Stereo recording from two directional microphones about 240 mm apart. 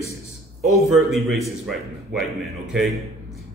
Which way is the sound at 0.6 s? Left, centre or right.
Centre.